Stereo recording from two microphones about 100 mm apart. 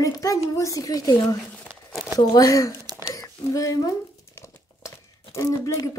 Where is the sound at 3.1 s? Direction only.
35° left (ahead or behind).